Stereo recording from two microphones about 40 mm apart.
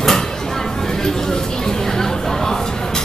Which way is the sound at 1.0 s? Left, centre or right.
Centre.